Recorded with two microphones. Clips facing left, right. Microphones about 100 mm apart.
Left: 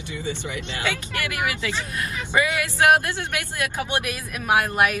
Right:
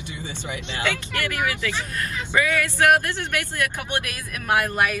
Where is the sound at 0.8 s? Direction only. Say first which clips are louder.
Right 2 dB; 15° left (ahead or behind).